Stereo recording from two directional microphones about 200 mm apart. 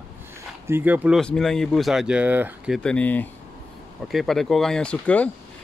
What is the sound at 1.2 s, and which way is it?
Speech, 5° left (ahead or behind).